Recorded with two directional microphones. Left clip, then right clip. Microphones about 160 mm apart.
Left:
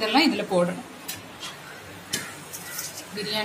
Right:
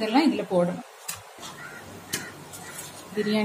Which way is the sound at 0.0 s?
45° right (ahead or behind).